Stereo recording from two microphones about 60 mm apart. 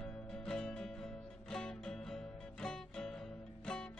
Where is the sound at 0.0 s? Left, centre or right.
Centre.